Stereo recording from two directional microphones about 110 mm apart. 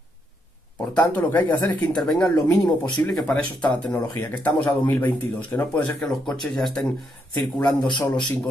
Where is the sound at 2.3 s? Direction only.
35° left (ahead or behind).